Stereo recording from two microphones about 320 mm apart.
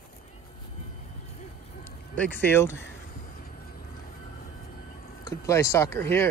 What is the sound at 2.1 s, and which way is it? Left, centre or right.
Speech, centre.